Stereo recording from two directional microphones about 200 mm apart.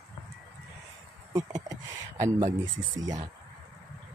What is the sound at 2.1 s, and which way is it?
Speech, 35° right (ahead or behind).